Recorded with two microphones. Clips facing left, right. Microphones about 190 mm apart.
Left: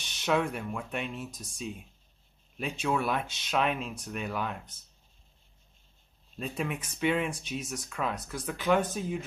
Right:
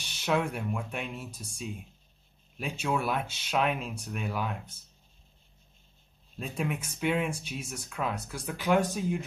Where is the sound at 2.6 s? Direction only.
10° right (ahead or behind).